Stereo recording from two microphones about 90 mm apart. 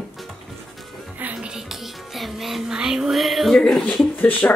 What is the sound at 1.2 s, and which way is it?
Music, 10° right (ahead or behind).